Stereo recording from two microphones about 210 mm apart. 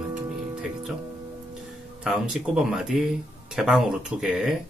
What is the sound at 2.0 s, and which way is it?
Speech, 5° right (ahead or behind).